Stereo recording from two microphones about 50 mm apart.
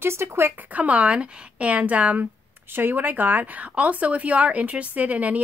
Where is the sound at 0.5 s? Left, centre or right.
Right.